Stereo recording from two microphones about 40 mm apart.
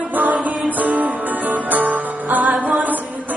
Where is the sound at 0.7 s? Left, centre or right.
Right.